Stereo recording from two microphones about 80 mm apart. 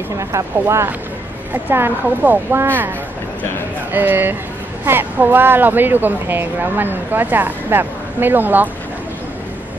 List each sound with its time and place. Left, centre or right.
0.3 s speech: right
1.5 s speech: right
3.9 s speech: right